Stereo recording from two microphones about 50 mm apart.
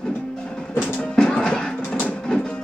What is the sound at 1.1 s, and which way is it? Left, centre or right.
Music, centre.